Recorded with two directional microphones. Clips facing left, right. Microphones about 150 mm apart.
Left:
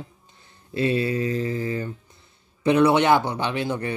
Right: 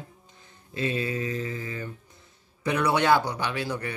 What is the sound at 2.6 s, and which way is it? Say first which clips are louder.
Speech: left 6 dB; 25° left (ahead or behind).